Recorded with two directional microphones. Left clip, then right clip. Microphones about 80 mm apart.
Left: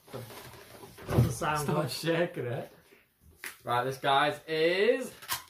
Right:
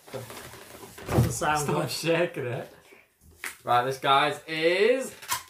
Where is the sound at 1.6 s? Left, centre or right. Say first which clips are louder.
Right 3 dB; left.